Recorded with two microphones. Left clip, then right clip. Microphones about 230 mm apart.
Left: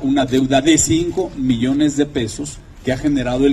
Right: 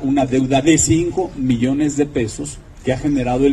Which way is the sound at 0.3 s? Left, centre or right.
Left.